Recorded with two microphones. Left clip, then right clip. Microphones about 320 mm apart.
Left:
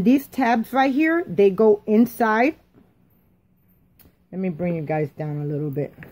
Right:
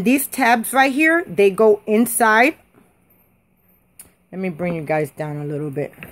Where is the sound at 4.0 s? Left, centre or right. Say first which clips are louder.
Right 2 dB; centre.